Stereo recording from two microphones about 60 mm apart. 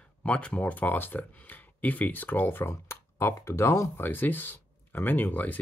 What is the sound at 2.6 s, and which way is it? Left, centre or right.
Speech, left.